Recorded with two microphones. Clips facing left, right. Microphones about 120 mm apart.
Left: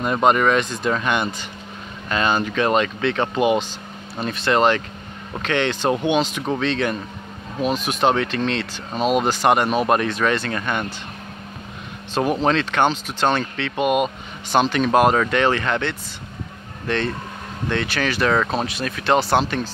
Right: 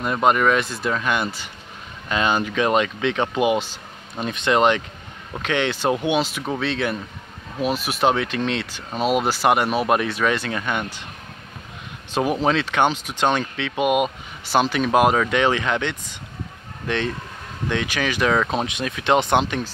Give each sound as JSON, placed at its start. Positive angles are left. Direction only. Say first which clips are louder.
{"t": 0.0, "sound": "speech", "louder": "left 1 dB", "side_deg": 0}
{"t": 12.1, "sound": "speech", "louder": "left 1 dB", "side_deg": -10}